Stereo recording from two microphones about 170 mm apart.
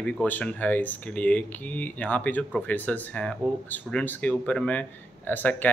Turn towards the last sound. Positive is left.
turn(degrees=10)  # may be behind; listen again after turning